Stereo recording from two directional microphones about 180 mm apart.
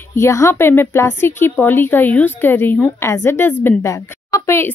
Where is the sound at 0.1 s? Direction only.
15° left (ahead or behind).